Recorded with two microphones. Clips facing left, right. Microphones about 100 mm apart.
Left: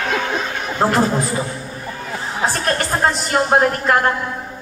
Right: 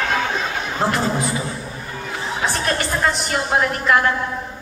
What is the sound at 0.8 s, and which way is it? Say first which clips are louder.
Speech: left 4 dB; 45° left (ahead or behind).